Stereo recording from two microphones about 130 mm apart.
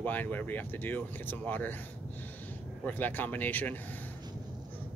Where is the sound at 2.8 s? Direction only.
15° left (ahead or behind).